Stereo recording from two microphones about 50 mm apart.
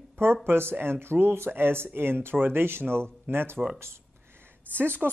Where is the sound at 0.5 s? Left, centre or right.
Right.